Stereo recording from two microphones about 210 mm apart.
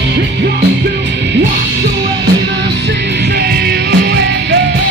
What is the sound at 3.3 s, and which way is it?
Music, 50° right (ahead or behind).